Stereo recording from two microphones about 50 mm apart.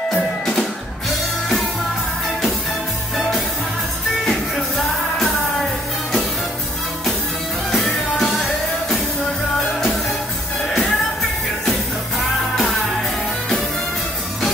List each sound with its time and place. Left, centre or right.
0.1 s music: centre
3.2 s music: centre
7.7 s music: centre
10.7 s music: centre